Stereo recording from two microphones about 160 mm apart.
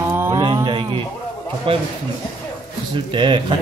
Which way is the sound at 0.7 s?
30° right (ahead or behind).